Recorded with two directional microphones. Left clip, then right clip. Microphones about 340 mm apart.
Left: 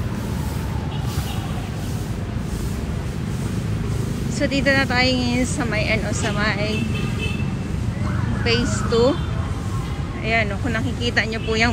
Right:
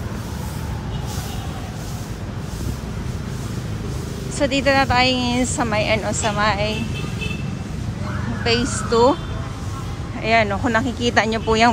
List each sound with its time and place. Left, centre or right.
4.4 s speech: centre
8.5 s speech: centre
10.2 s speech: centre